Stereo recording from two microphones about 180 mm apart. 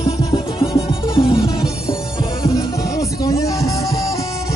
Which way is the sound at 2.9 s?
20° left (ahead or behind).